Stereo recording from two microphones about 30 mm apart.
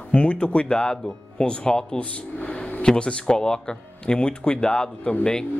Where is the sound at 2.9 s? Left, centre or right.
Left.